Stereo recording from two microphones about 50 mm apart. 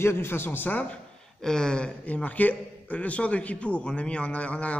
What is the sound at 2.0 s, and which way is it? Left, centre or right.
A man's voice, left.